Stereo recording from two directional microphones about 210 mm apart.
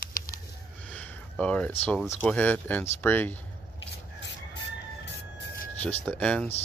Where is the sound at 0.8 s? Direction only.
5° left (ahead or behind).